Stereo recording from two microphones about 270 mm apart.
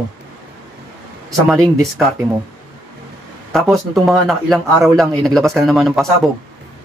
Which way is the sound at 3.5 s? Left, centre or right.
Centre.